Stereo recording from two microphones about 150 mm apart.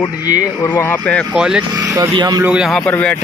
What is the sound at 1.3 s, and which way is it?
Speech, 5° right (ahead or behind).